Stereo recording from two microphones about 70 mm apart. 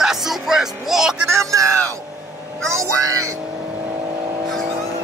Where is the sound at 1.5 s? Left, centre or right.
Right.